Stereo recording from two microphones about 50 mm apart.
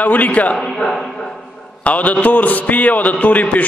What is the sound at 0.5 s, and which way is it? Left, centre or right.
Speech, centre.